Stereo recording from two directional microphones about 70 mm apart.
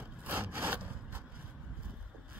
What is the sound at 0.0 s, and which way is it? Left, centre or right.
Sawing, right.